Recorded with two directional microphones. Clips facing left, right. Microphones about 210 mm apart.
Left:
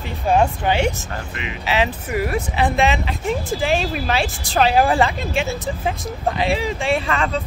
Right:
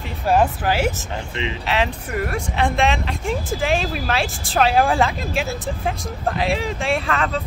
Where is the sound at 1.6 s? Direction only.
5° left (ahead or behind).